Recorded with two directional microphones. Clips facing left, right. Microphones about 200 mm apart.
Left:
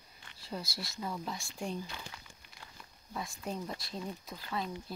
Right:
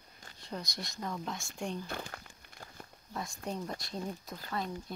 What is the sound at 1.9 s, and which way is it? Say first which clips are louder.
Crumpling: right 6 dB; 55° right (ahead or behind).